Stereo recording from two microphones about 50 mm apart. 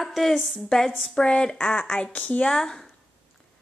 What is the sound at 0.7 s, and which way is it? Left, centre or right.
Speech, centre.